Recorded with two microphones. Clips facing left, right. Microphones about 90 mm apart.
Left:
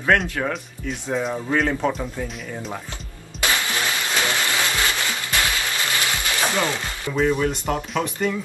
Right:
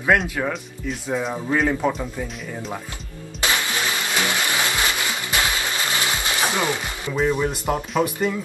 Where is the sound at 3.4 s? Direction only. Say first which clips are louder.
Even; 20° right (ahead or behind).